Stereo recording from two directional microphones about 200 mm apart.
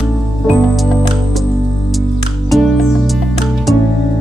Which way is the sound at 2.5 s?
Centre (ahead or behind).